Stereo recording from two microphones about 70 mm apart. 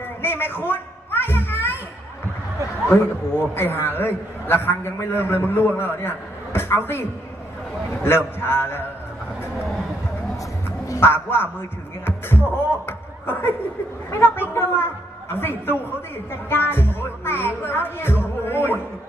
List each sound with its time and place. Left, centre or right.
0.2 s a sound: left
2.9 s speech: left
11.0 s speech: left